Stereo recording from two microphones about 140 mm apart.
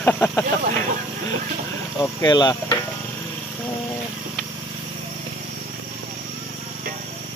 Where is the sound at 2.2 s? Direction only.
30° left (ahead or behind).